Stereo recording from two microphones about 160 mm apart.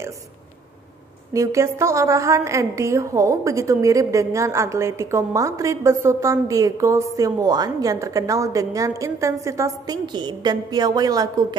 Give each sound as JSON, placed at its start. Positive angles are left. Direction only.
{"t": 1.3, "sound": "a woman's voice", "side_deg": -20}